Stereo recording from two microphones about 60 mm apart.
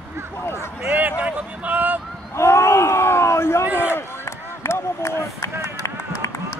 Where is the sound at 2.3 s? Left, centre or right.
Left.